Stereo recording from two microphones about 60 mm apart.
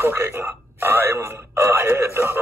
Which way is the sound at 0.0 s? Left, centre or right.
Right.